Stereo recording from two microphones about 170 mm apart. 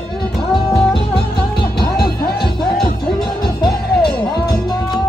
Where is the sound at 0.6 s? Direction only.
20° left (ahead or behind).